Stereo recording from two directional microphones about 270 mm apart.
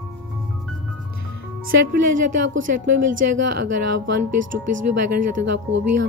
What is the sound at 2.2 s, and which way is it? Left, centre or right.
Speech, right.